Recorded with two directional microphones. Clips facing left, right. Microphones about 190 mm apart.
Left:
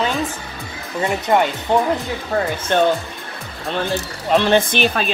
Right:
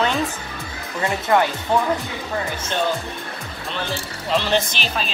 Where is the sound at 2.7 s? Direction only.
55° left (ahead or behind).